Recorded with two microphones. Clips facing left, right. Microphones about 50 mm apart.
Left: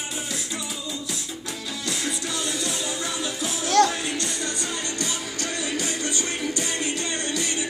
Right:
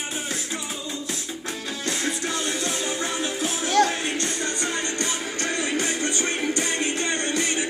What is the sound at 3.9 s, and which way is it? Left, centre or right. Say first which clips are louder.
Music: right 1 dB; right.